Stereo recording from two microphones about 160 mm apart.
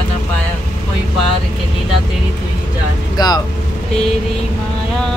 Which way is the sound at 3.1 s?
25° left (ahead or behind).